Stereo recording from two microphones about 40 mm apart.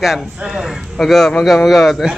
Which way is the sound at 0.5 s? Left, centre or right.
Centre.